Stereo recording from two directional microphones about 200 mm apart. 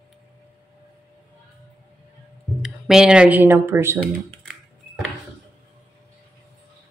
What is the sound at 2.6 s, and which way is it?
Speech, 5° right (ahead or behind).